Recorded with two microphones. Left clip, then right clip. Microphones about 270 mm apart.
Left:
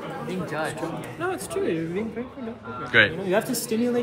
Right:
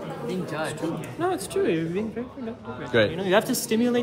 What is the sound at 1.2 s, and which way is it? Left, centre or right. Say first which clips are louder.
Speech: right 2 dB; right.